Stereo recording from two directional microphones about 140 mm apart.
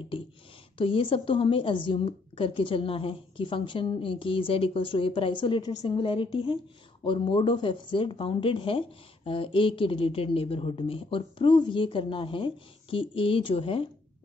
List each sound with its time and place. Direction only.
0.7 s a woman's voice: 40° left (ahead or behind)